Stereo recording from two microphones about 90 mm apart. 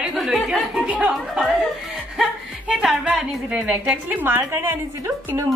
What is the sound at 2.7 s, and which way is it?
Speech, 10° right (ahead or behind).